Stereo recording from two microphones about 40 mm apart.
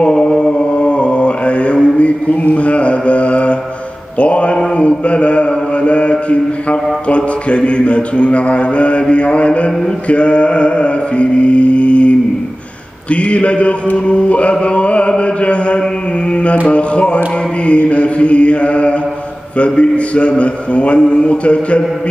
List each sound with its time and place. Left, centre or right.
0.0 s mantra: left
13.1 s mantra: left
21.0 s a sound: left